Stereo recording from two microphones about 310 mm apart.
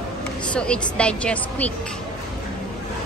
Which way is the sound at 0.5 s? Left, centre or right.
Centre.